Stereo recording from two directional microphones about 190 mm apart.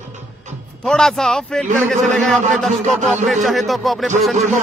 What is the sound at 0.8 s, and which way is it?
Speech, 5° left (ahead or behind).